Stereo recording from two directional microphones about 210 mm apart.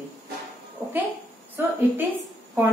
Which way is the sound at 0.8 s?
10° right (ahead or behind).